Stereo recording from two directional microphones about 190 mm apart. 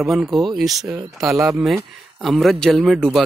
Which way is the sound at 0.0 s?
Centre (ahead or behind).